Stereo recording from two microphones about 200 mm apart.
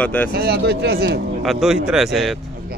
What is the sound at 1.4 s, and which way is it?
Speech, centre (ahead or behind).